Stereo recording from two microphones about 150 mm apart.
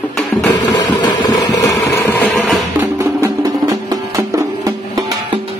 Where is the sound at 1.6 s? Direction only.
20° left (ahead or behind).